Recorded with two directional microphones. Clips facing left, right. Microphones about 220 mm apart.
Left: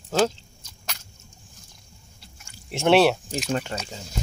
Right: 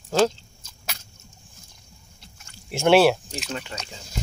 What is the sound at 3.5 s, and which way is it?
Speech, 50° left (ahead or behind).